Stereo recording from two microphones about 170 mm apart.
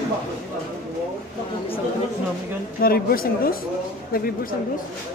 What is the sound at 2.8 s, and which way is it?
Speech, 60° left (ahead or behind).